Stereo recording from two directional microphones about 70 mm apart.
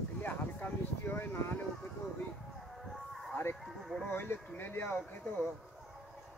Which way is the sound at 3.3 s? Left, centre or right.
Left.